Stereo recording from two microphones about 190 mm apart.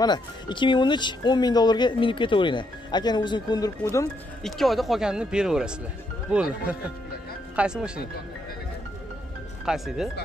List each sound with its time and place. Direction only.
0.0 s speech: 25° left (ahead or behind)
4.4 s speech: centre (ahead or behind)
7.5 s speech: 5° right (ahead or behind)
9.7 s speech: 5° right (ahead or behind)